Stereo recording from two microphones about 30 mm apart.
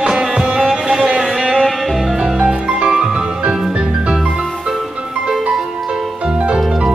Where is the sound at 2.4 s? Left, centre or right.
Right.